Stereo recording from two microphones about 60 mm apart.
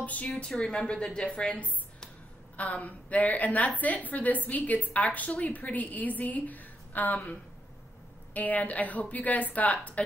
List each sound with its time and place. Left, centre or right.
0.0 s a woman's voice: left
8.3 s a woman's voice: left